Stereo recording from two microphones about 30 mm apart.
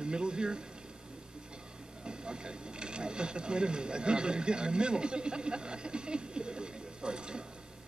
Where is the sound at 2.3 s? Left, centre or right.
Right.